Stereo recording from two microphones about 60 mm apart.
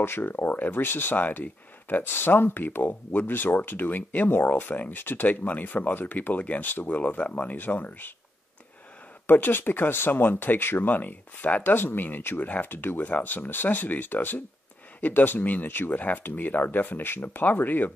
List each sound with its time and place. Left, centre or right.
0.0 s speech: left
9.3 s speech: left